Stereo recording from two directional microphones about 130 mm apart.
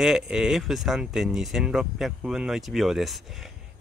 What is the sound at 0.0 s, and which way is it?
Speech, 5° right (ahead or behind).